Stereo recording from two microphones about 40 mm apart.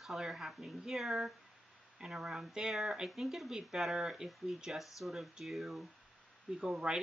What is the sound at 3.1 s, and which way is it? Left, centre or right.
Speech, centre.